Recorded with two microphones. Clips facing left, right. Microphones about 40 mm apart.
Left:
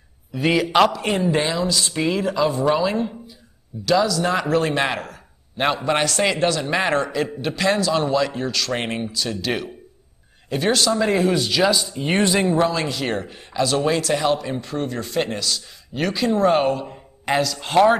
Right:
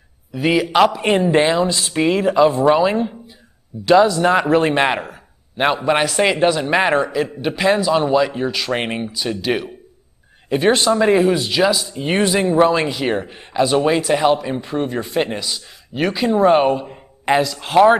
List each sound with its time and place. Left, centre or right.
0.3 s a man's voice: centre
0.9 s speech: right
1.8 s a woman's voice: right
10.5 s a woman's voice: right
11.2 s a man's voice: centre
12.4 s a woman's voice: right